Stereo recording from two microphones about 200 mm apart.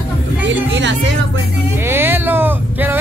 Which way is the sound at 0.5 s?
65° right (ahead or behind).